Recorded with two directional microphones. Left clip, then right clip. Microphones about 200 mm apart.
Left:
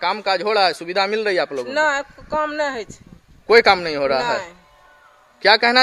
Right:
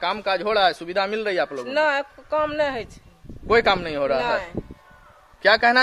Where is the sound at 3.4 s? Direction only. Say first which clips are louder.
Left 5 dB; 45° left (ahead or behind).